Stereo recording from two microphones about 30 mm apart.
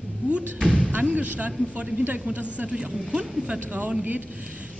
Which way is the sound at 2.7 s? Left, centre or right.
Right.